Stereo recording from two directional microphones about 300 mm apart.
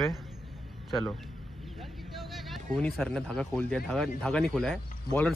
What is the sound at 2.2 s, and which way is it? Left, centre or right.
Speech, centre.